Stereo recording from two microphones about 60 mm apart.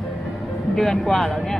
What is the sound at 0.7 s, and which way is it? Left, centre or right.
Speech, centre.